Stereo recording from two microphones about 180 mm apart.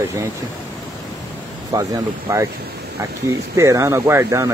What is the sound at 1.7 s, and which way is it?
Speech, 20° right (ahead or behind).